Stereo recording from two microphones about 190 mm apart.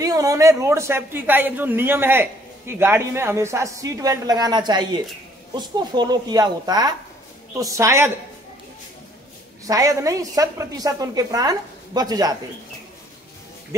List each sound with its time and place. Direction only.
0.0 s a woman's voice: 20° right (ahead or behind)
9.7 s a woman's voice: 20° right (ahead or behind)